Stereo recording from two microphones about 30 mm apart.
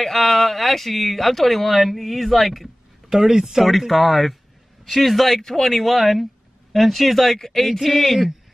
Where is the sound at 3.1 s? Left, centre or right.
Centre.